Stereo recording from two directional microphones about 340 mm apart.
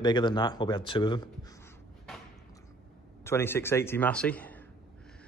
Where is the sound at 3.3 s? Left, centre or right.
Centre.